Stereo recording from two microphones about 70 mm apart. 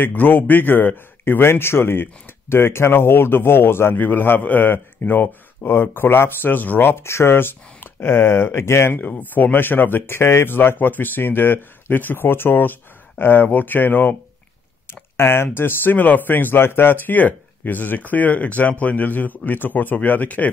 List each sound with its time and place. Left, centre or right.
0.0 s a man's voice: left
8.9 s speech: left